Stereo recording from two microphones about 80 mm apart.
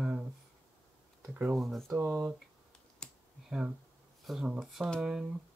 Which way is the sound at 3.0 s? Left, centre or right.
Centre.